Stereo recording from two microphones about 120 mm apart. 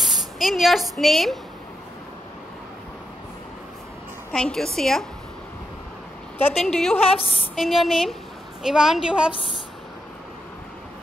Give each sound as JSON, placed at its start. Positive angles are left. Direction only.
{"t": 0.0, "sound": "speech", "side_deg": 0}
{"t": 4.3, "sound": "a woman's voice", "side_deg": 5}
{"t": 6.5, "sound": "a woman's voice", "side_deg": 0}
{"t": 7.0, "sound": "a woman's voice", "side_deg": 55}
{"t": 7.5, "sound": "a woman's voice", "side_deg": 0}